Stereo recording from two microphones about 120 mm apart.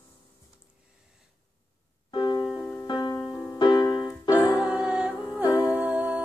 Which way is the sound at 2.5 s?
15° left (ahead or behind).